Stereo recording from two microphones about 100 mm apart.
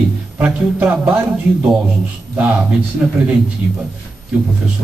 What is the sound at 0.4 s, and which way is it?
Speech, 15° right (ahead or behind).